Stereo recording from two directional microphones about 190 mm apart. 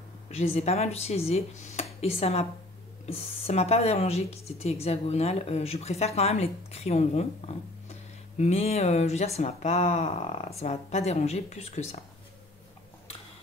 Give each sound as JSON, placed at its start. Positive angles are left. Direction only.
{"t": 0.3, "sound": "speech", "side_deg": 35}